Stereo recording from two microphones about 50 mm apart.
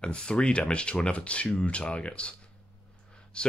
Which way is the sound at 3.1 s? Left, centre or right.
Centre.